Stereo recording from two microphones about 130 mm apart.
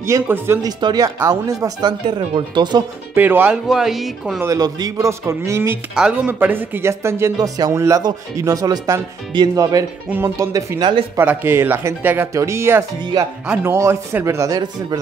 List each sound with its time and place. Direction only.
0.0 s speech: 20° right (ahead or behind); by 2.8 s 35° right (ahead or behind)
3.2 s speech: 15° right (ahead or behind)
3.6 s speech: 5° right (ahead or behind)
4.4 s speech: 25° right (ahead or behind)
5.9 s speech: 10° right (ahead or behind); by 11.1 s 35° right (ahead or behind)
11.1 s speech: 20° right (ahead or behind)